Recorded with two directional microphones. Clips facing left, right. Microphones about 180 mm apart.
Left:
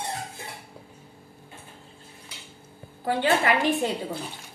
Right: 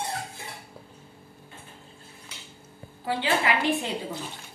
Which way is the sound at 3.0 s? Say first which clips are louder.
Left 3 dB; 50° left (ahead or behind).